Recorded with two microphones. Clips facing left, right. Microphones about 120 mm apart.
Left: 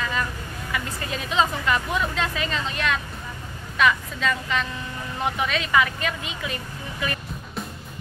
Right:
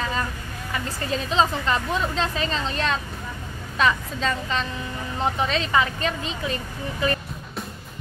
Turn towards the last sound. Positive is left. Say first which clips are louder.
# right 5 dB
turn(degrees=-35)  # may be behind; listen again after turning